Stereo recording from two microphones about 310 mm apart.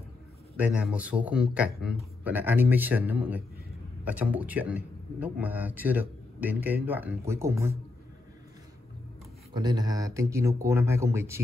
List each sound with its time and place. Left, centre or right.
0.6 s speech: centre
9.5 s speech: centre